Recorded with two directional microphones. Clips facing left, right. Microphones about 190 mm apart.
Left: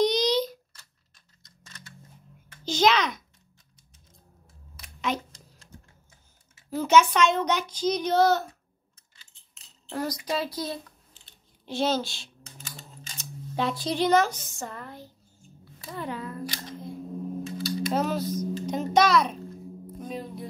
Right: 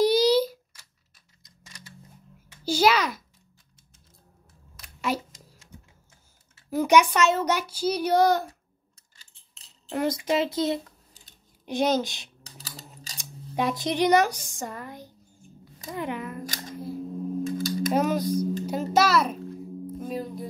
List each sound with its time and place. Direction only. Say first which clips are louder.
0.0 s a sound: right 4 dB; 5° right (ahead or behind)
2.5 s a child's voice: right 1 dB; 10° right (ahead or behind)
5.1 s a child's voice: right 2 dB; 10° right (ahead or behind)
6.7 s a child's voice: right 1 dB; 15° right (ahead or behind)
9.9 s a child's voice: right 5 dB; 25° right (ahead or behind)
12.4 s a sound: right 1 dB; 35° right (ahead or behind)
13.2 s a child's voice: right 1 dB; 15° right (ahead or behind)
17.4 s a sound: right 4 dB; 50° right (ahead or behind)
17.9 s a child's voice: right 4 dB; 15° right (ahead or behind)
18.7 s music: left 2 dB; 5° right (ahead or behind)